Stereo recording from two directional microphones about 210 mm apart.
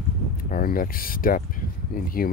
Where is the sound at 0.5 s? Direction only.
45° left (ahead or behind).